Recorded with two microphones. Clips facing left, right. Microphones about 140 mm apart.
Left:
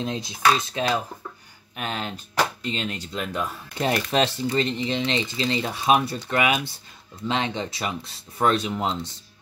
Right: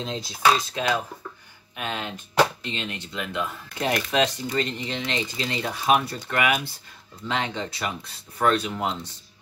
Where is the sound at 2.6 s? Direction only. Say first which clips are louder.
Left 3 dB; 40° left (ahead or behind).